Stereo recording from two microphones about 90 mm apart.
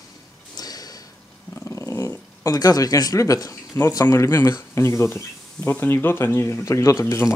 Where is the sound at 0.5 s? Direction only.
45° left (ahead or behind).